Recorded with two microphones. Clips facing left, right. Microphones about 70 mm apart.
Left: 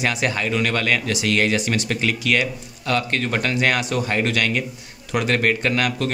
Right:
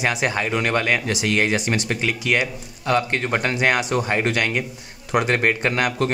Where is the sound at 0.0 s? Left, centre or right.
Centre.